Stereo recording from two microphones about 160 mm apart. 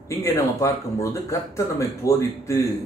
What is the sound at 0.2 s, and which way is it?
Speech, 20° left (ahead or behind).